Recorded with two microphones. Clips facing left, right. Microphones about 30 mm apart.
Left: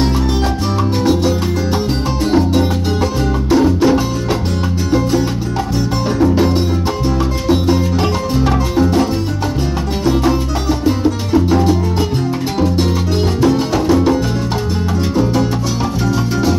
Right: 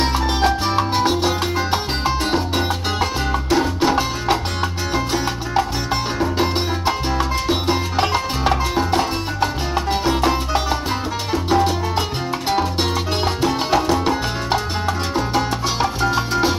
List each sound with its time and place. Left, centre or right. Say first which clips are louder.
0.0 s music: left 2 dB; right
2.3 s music: left 6 dB; centre
6.1 s music: left 9 dB; centre
15.1 s music: left 6 dB; right